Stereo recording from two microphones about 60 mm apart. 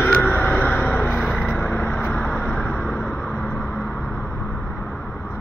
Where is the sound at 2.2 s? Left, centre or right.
Centre.